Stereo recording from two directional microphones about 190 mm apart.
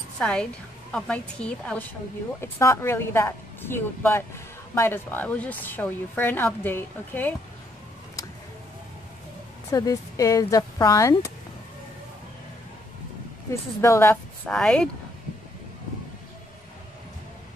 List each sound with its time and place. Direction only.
0.2 s a woman's voice: 5° left (ahead or behind)
9.7 s a woman's voice: 20° left (ahead or behind)
13.7 s a woman's voice: 15° left (ahead or behind)